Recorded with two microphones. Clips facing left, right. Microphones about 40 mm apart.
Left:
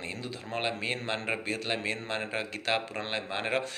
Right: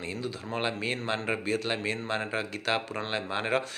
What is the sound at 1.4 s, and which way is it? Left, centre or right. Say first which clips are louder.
Speech: right 4 dB; centre.